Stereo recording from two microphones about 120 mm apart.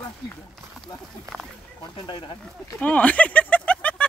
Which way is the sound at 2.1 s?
40° left (ahead or behind).